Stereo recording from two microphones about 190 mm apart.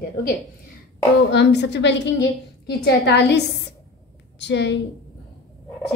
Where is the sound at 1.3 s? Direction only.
65° left (ahead or behind).